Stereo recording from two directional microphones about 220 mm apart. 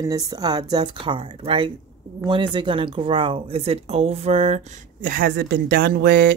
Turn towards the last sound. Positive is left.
turn(degrees=-45)  # may be behind; listen again after turning